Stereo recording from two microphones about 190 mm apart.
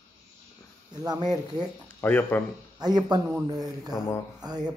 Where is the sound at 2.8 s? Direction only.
20° right (ahead or behind).